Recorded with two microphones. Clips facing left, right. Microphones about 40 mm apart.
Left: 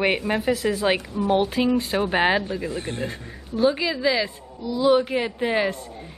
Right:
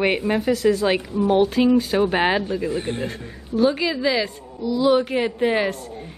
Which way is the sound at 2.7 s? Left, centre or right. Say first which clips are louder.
Right 4 dB; right.